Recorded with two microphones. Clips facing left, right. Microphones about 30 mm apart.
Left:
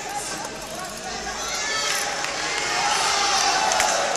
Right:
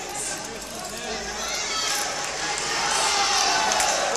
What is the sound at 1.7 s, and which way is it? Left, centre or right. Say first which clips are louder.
Run: left 3 dB; centre.